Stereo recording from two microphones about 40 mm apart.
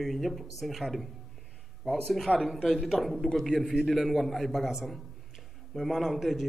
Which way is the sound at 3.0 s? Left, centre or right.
Centre.